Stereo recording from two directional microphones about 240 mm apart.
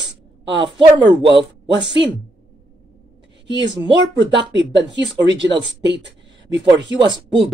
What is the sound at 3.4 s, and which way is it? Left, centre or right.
Speech, right.